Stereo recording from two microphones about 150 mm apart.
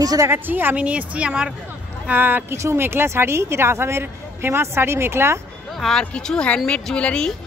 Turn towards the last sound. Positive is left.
turn(degrees=5)  # may be behind; listen again after turning